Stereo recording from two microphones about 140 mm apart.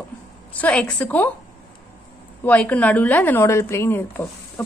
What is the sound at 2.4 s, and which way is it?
A woman's voice, 10° left (ahead or behind).